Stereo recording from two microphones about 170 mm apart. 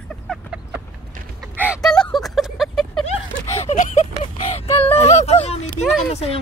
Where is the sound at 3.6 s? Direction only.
45° left (ahead or behind).